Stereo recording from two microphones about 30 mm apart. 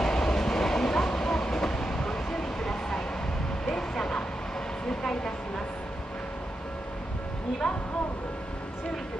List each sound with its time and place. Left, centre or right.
0.0 s train: centre
3.6 s vehicle: centre
7.6 s a sound: left